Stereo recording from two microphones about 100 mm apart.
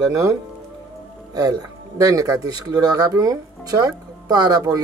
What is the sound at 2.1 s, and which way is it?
Speech, 35° right (ahead or behind).